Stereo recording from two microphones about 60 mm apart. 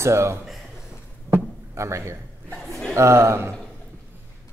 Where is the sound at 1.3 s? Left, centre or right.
Right.